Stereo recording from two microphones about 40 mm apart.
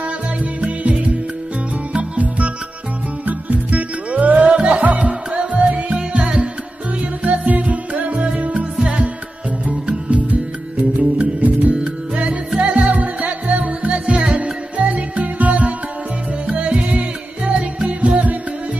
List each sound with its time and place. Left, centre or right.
0.0 s music: right
7.2 s music: right
12.9 s music: right